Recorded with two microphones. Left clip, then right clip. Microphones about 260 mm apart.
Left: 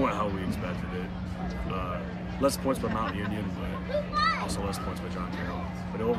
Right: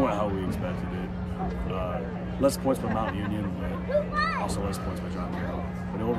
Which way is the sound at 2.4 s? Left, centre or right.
Centre.